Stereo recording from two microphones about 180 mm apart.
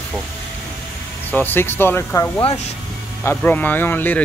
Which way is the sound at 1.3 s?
10° left (ahead or behind).